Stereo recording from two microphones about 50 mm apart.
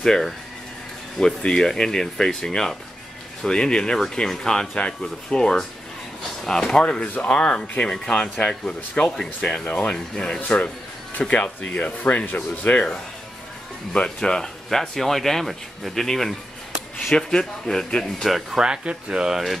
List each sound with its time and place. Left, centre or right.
0.0 s speech: centre; by 9.8 s left
9.8 s speech: centre
12.7 s speech: left
13.9 s speech: centre
18.6 s speech: centre
19.3 s speech: centre